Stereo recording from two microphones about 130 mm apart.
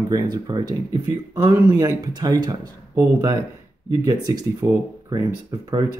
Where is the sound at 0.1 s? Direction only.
30° right (ahead or behind).